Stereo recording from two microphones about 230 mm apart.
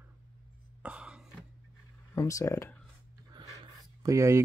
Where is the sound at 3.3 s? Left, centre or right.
Centre.